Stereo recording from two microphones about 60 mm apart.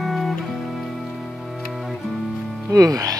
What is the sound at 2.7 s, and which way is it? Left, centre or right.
Speech, right.